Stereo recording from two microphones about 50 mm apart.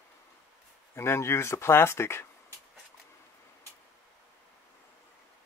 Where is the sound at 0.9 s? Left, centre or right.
Left.